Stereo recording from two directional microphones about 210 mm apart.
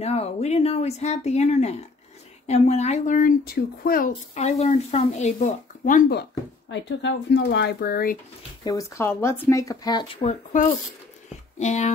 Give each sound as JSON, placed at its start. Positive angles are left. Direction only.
{"t": 0.0, "sound": "speech", "side_deg": 30}
{"t": 6.7, "sound": "speech", "side_deg": 60}
{"t": 8.6, "sound": "speech", "side_deg": 15}
{"t": 11.5, "sound": "speech", "side_deg": 35}